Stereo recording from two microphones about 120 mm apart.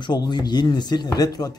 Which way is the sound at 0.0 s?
35° left (ahead or behind).